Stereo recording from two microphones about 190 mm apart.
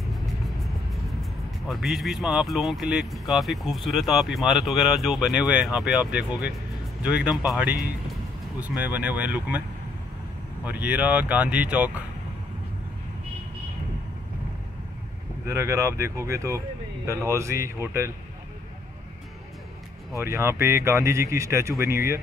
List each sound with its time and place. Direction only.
1.7 s speech: centre (ahead or behind)
10.6 s speech: 10° right (ahead or behind)
15.4 s speech: 15° right (ahead or behind)
20.2 s speech: 15° right (ahead or behind)